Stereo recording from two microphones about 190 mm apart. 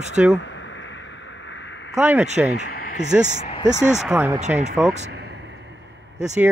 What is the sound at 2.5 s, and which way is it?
Speech, 50° left (ahead or behind).